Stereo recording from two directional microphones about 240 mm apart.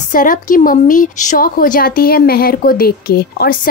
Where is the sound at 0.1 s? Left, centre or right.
Left.